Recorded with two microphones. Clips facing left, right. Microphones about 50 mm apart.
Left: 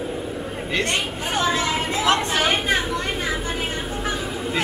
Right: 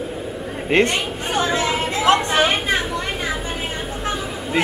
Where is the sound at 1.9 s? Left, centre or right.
Right.